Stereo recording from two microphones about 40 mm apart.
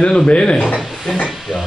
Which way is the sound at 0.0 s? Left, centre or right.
Centre.